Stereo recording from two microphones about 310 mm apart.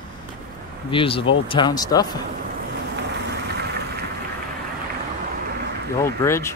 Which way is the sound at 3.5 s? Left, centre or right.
Right.